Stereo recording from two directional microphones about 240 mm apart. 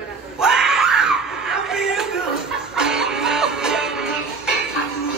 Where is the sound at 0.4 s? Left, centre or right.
Centre.